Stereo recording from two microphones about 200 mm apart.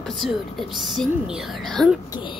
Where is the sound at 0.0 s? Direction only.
Centre (ahead or behind).